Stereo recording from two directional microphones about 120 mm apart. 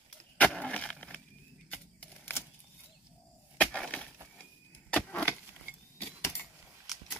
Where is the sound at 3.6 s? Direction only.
10° left (ahead or behind).